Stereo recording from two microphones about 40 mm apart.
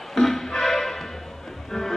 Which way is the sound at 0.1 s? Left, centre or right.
Centre.